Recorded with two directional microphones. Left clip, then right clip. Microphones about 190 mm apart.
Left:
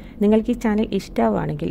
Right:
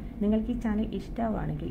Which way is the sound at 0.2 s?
60° left (ahead or behind).